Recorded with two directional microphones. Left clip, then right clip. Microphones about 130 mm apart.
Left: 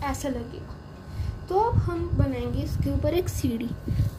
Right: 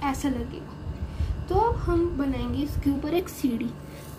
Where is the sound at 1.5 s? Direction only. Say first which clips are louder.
Right 1 dB; 15° left (ahead or behind).